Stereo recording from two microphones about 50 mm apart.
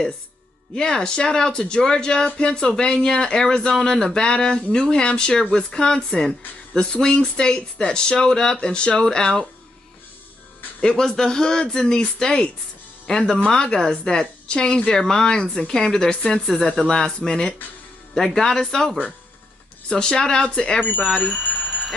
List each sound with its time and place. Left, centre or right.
0.7 s speech: centre
10.8 s speech: centre
19.9 s speech: centre
21.5 s a sound: centre